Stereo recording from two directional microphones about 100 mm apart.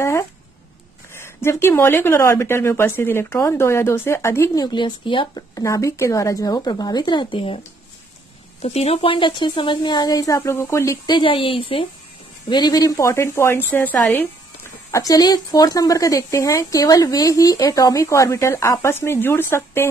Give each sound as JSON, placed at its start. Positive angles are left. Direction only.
{"t": 0.0, "sound": "a sound", "side_deg": 25}
{"t": 1.1, "sound": "a woman's voice", "side_deg": 25}
{"t": 4.6, "sound": "speech", "side_deg": 50}
{"t": 5.5, "sound": "speech", "side_deg": 30}
{"t": 8.6, "sound": "speech", "side_deg": 90}
{"t": 11.1, "sound": "a woman's voice", "side_deg": 55}
{"t": 12.4, "sound": "a woman's voice", "side_deg": 45}